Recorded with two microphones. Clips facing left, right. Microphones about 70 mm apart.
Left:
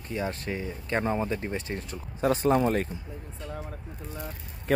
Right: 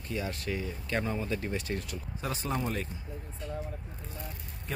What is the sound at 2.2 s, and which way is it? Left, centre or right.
Speech, left.